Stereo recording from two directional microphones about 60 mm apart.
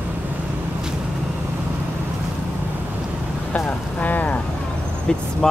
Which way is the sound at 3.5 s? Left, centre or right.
Left.